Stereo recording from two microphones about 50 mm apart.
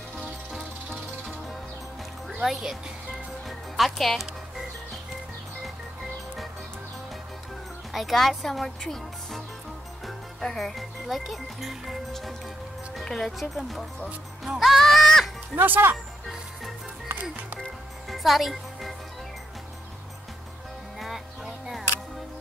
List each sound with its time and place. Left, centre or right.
2.4 s speech: centre
3.4 s music: centre
7.9 s speech: centre
14.4 s music: centre
15.5 s speech: right
18.0 s music: centre
21.0 s music: centre